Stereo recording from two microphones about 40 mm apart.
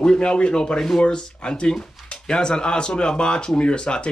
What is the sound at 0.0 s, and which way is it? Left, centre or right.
Speech, left.